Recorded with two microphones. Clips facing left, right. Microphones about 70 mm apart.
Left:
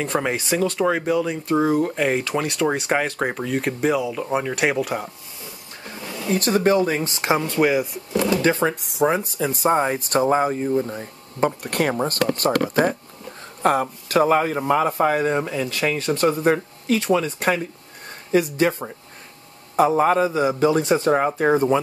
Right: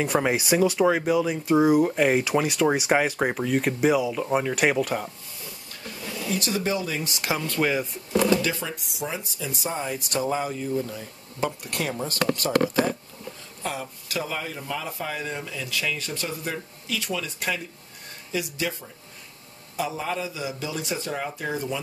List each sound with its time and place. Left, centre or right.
0.0 s speech: centre
5.9 s speech: left
7.7 s speech: centre
8.4 s speech: left